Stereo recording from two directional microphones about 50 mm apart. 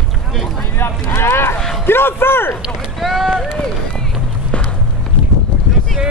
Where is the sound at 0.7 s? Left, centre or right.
Left.